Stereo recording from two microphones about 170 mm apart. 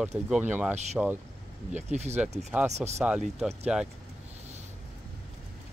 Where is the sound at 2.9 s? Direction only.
5° right (ahead or behind).